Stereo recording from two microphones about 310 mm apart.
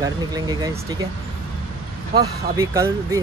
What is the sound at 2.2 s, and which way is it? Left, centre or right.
Speech, centre.